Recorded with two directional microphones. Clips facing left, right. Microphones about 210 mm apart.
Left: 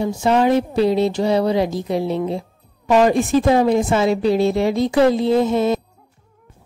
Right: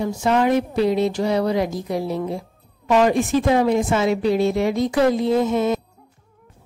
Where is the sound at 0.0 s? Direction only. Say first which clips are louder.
Left 2 dB; 30° left (ahead or behind).